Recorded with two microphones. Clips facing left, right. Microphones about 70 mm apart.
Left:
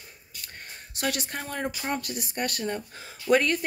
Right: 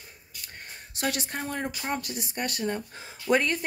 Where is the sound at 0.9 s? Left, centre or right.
Right.